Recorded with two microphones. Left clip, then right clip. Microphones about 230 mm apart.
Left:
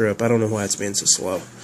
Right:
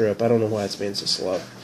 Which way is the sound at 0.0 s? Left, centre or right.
Left.